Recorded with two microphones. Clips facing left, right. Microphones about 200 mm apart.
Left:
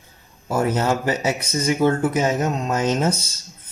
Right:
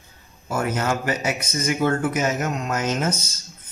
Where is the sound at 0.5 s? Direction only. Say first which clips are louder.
Left 3 dB; 35° left (ahead or behind).